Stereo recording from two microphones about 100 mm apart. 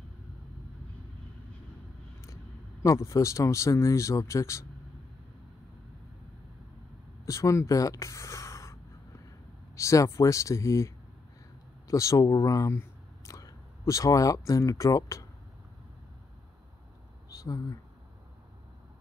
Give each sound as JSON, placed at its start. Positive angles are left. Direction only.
{"t": 2.8, "sound": "speech", "side_deg": 30}
{"t": 7.2, "sound": "speech", "side_deg": 30}
{"t": 9.8, "sound": "speech", "side_deg": 30}
{"t": 11.9, "sound": "speech", "side_deg": 30}
{"t": 17.4, "sound": "speech", "side_deg": 35}